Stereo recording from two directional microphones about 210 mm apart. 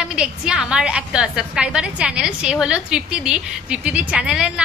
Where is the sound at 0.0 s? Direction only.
5° right (ahead or behind).